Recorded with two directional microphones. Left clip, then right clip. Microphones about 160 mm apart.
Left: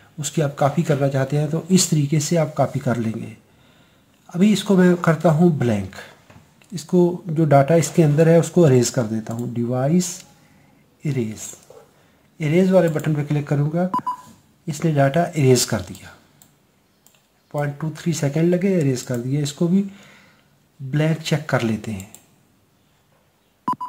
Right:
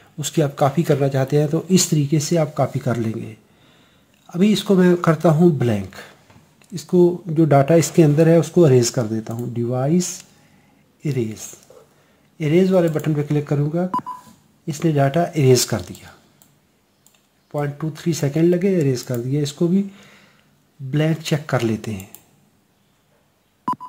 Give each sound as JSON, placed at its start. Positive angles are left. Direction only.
{"t": 0.2, "sound": "speech", "side_deg": -30}
{"t": 17.5, "sound": "speech", "side_deg": -25}
{"t": 23.7, "sound": "telephone dialing", "side_deg": 0}